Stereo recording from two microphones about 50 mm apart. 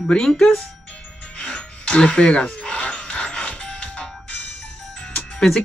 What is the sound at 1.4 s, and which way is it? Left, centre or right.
Music, centre.